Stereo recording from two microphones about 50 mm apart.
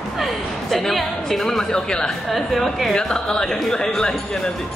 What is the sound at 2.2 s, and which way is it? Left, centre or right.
Speech, centre.